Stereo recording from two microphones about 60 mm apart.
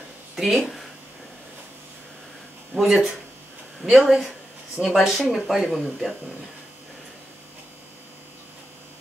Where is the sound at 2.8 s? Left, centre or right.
Centre.